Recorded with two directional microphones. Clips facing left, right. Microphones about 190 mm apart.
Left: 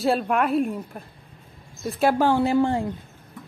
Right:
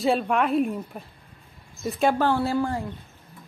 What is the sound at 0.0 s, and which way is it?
A woman's voice, centre (ahead or behind).